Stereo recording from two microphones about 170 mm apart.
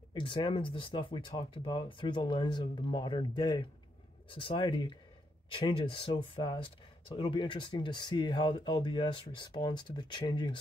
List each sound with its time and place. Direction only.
0.1 s speech: 30° left (ahead or behind)